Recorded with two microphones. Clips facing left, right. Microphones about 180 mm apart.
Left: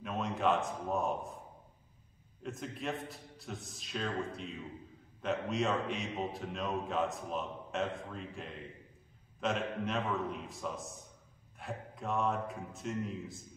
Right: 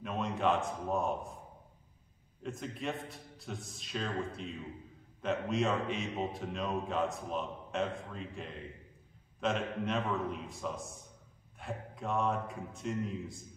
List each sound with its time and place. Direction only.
0.0 s a man's voice: centre (ahead or behind)
2.4 s a man's voice: centre (ahead or behind)